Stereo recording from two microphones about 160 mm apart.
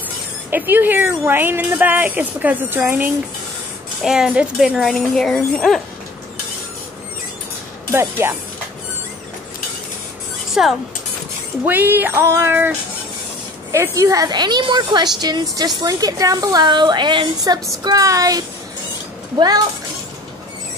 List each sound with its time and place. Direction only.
0.5 s speech: 10° right (ahead or behind)
4.0 s speech: 5° right (ahead or behind)
7.9 s speech: 15° right (ahead or behind)
10.6 s a woman's voice: 5° right (ahead or behind); by 19.6 s 25° right (ahead or behind)